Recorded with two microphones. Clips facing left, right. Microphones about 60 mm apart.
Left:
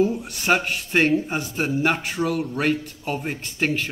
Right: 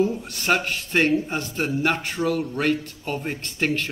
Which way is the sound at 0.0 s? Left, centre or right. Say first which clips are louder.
Left 1 dB; centre.